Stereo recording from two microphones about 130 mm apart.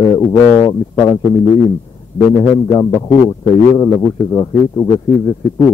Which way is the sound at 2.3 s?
30° left (ahead or behind).